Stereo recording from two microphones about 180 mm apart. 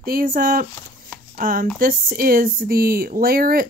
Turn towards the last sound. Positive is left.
turn(degrees=-55)  # may be behind; listen again after turning